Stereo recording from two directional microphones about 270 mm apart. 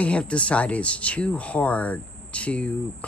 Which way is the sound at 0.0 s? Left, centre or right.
Centre.